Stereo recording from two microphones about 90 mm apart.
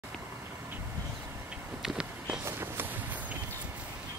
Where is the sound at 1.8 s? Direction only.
5° right (ahead or behind).